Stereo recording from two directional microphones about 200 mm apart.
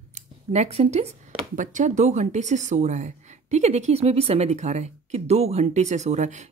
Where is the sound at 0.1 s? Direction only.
35° right (ahead or behind).